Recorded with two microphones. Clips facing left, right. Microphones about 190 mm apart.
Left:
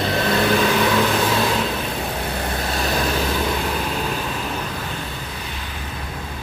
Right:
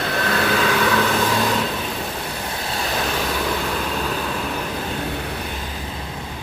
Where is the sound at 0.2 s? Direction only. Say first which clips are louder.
Left 2 dB; 15° left (ahead or behind).